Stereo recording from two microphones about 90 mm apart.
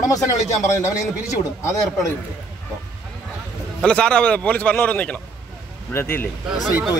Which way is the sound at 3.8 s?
10° left (ahead or behind).